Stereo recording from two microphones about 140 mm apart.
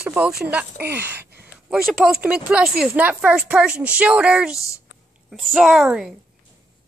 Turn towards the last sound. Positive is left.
turn(degrees=-5)  # may be behind; listen again after turning